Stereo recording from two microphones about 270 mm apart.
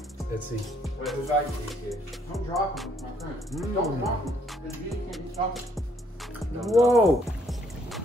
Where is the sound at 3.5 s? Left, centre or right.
Centre.